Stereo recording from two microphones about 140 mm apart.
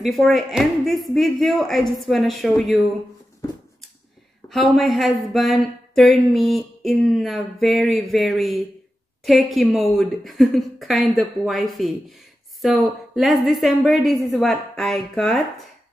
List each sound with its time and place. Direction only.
0.0 s speech: centre (ahead or behind)
4.5 s speech: centre (ahead or behind)